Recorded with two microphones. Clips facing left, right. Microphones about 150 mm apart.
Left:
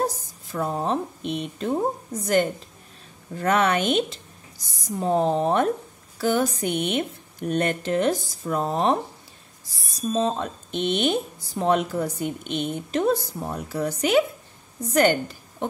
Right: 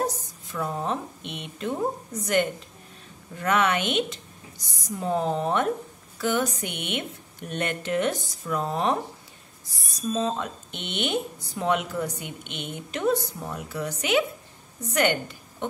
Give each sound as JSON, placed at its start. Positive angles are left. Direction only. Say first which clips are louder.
{"t": 0.0, "sound": "a woman's voice", "louder": "left 2 dB", "side_deg": 30}
{"t": 3.3, "sound": "speech", "louder": "left 3 dB", "side_deg": 35}